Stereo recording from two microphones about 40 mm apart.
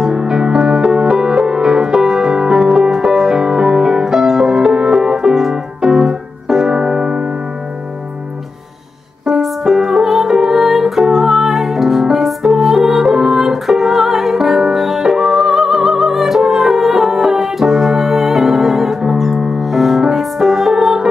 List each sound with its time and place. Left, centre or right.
0.0 s music: centre
5.8 s keyboard: centre
9.2 s music: centre